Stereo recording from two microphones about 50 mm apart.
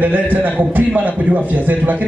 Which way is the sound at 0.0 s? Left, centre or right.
Right.